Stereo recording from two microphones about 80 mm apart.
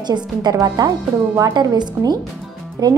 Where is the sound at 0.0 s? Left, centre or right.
Right.